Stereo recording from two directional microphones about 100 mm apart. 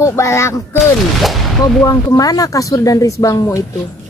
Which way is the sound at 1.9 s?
35° left (ahead or behind).